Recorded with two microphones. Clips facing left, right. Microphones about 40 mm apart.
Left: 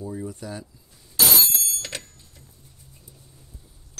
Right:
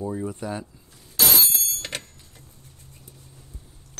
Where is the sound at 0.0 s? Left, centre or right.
Right.